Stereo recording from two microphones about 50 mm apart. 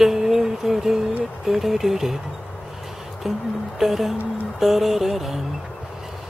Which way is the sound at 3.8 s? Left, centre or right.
Centre.